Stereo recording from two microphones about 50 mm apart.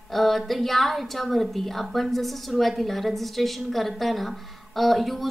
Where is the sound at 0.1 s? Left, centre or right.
Centre.